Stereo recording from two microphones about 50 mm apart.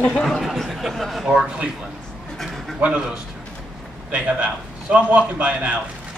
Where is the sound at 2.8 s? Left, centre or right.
Right.